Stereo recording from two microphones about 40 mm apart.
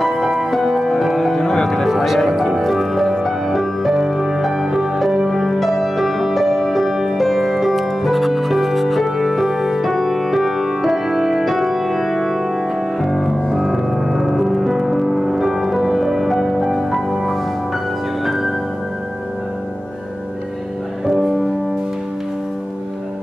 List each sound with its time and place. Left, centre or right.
0.0 s music: centre
1.9 s music: centre